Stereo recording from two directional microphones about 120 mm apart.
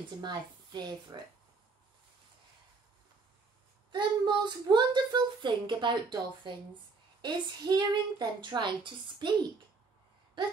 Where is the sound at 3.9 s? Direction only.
40° right (ahead or behind).